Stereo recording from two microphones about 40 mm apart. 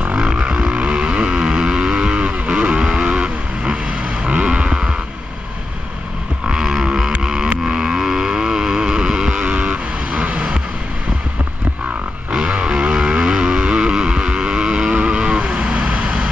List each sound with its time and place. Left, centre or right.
0.2 s vehicle: centre
1.3 s music: centre
2.2 s vehicle: right
6.5 s vehicle: centre
7.2 s music: centre
7.6 s vehicle: centre
9.5 s vehicle: right
12.3 s a sound: right
12.7 s vehicle: centre